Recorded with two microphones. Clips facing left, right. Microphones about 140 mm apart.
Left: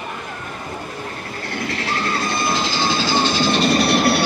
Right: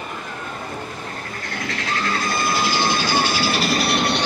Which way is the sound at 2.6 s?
15° right (ahead or behind).